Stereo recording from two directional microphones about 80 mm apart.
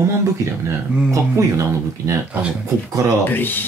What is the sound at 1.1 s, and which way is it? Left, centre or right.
Speech, right.